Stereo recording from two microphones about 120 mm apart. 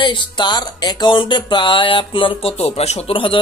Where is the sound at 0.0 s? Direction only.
40° left (ahead or behind).